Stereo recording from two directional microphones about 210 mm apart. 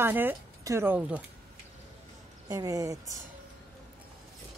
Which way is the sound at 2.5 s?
15° right (ahead or behind).